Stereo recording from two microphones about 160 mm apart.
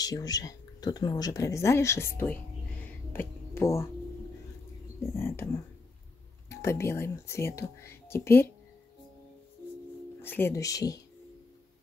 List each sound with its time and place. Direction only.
0.0 s speech: 25° left (ahead or behind)
2.8 s a sound: 15° left (ahead or behind)
5.0 s speech: 15° left (ahead or behind)
10.2 s speech: 15° left (ahead or behind)